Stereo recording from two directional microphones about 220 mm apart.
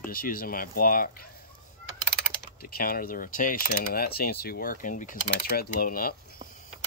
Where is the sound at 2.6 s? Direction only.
40° left (ahead or behind).